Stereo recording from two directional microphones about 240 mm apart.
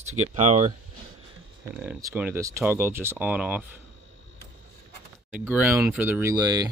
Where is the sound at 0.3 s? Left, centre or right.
Right.